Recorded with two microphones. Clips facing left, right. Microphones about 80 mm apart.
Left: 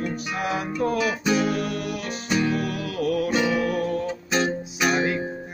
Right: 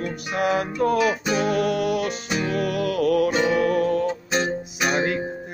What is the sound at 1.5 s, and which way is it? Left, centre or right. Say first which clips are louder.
Music: right 6 dB; right.